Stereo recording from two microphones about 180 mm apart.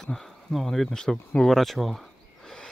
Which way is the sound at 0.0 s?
Centre (ahead or behind).